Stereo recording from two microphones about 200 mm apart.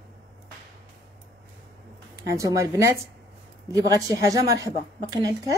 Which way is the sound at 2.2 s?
15° right (ahead or behind).